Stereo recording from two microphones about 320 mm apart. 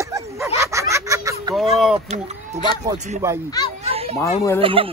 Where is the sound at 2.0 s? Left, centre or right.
Right.